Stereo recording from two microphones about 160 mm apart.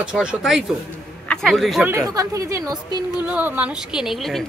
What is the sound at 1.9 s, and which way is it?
Speech, 20° right (ahead or behind).